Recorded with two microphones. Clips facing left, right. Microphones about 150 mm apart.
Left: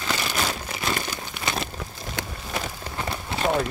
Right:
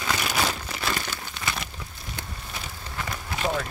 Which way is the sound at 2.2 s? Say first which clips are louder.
Left 7 dB; 90° left.